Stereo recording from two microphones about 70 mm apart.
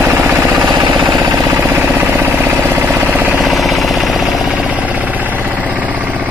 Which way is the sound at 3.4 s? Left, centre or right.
Centre.